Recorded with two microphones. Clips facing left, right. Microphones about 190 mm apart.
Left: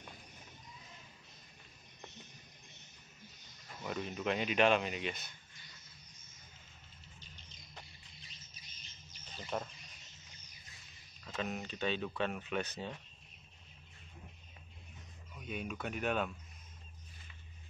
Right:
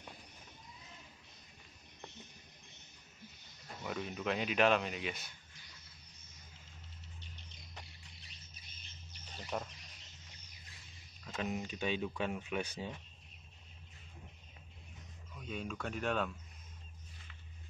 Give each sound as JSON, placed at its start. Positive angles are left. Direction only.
{"t": 3.8, "sound": "speech", "side_deg": 0}
{"t": 8.2, "sound": "rodents", "side_deg": -60}
{"t": 9.4, "sound": "bird", "side_deg": -5}
{"t": 11.3, "sound": "speech", "side_deg": -15}
{"t": 15.3, "sound": "speech", "side_deg": 10}